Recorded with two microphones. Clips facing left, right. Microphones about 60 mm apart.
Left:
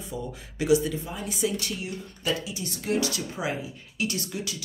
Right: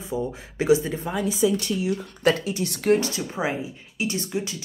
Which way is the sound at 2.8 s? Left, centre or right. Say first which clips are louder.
Right 6 dB; right.